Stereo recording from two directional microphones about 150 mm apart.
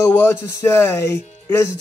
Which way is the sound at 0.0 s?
15° left (ahead or behind).